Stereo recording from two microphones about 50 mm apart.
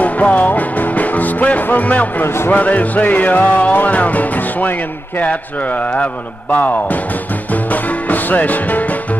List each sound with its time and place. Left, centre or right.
0.0 s music: left
2.2 s speech: left
2.5 s music: left
5.2 s speech: left
6.5 s music: left